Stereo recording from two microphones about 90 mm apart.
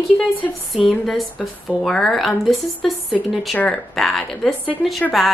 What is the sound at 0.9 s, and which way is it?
A woman's voice, centre (ahead or behind).